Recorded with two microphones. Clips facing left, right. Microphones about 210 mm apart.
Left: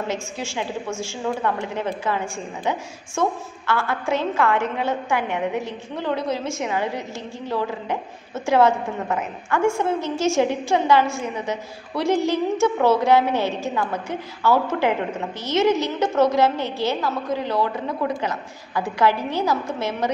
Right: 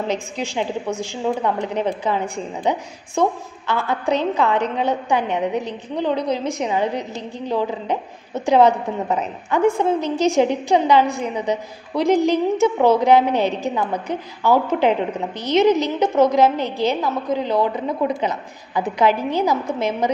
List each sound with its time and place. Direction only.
0.1 s a woman's voice: 15° right (ahead or behind)